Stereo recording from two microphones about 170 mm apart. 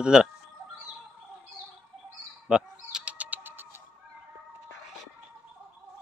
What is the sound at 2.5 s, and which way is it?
Bird, 5° right (ahead or behind).